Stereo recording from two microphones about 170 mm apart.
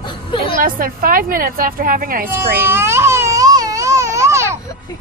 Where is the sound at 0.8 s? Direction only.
55° right (ahead or behind).